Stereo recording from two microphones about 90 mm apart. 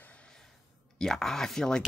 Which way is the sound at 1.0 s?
5° left (ahead or behind).